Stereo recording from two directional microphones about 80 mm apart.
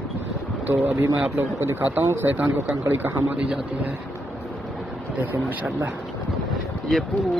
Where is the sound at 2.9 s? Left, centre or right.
Right.